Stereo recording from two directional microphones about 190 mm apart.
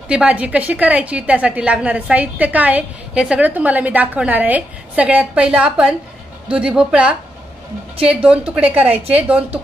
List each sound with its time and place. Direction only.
0.1 s a woman's voice: 5° right (ahead or behind)